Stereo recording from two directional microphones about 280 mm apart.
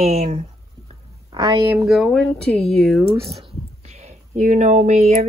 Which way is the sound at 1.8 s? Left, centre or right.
Centre.